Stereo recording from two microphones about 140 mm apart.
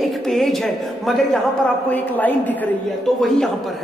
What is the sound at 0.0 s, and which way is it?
A man's voice, centre (ahead or behind).